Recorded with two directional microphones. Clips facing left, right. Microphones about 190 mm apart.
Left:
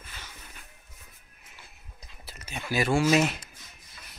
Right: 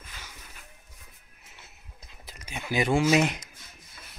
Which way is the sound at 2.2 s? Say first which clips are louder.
Even; 15° right (ahead or behind).